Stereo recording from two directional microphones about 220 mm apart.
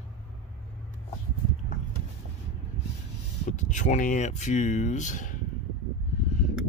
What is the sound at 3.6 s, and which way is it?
A man's voice, 35° left (ahead or behind).